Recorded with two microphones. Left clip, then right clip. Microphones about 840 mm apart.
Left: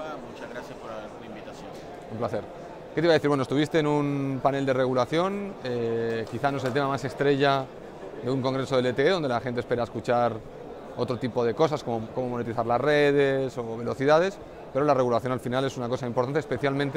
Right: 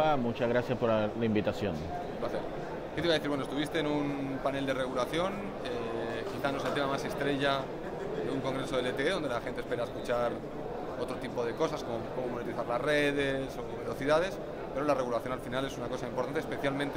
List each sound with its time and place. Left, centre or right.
0.0 s speech: right
3.0 s a man's voice: left